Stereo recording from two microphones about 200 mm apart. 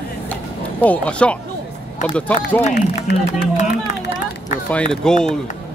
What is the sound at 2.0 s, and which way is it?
Speech, 5° left (ahead or behind).